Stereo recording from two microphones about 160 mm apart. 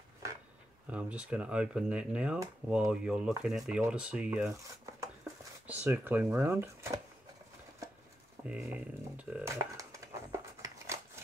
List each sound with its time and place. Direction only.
0.8 s speech: 10° right (ahead or behind)
4.5 s cutlery: 20° right (ahead or behind)
5.7 s speech: 10° right (ahead or behind)
8.5 s speech: 10° right (ahead or behind)
9.5 s crumpling: 20° right (ahead or behind)